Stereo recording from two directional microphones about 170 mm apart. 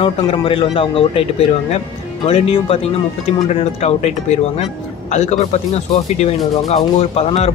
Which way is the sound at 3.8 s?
40° left (ahead or behind).